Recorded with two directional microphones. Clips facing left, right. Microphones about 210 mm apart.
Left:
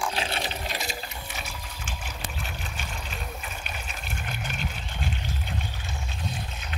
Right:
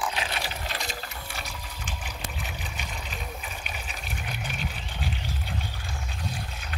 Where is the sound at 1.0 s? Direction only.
5° left (ahead or behind).